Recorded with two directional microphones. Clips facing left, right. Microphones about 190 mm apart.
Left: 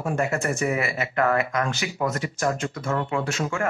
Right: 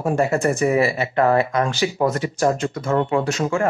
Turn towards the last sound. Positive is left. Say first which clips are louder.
# right 6 dB
turn(degrees=-40)  # may be behind; listen again after turning